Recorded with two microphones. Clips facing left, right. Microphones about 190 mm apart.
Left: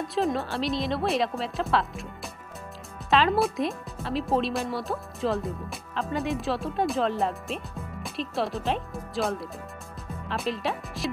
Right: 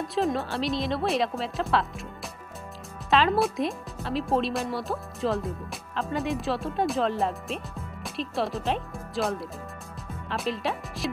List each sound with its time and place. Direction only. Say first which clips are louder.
0.0 s speech: even; centre (ahead or behind)
3.1 s speech: even; centre (ahead or behind)